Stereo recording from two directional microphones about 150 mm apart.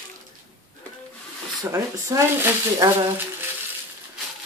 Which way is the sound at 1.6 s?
20° right (ahead or behind).